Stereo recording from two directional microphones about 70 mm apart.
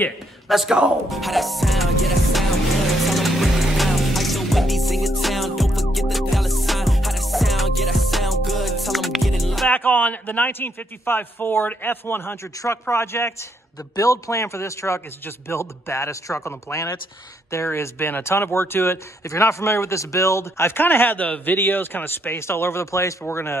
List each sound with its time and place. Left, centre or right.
0.5 s speech: centre
1.0 s music: centre
9.7 s a man's voice: left
13.9 s a man's voice: left
23.2 s speech: left